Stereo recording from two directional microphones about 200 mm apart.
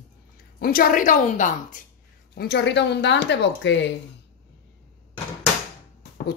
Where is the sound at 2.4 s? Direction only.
55° left (ahead or behind).